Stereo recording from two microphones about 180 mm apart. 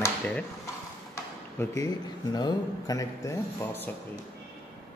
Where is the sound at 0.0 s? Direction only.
5° left (ahead or behind).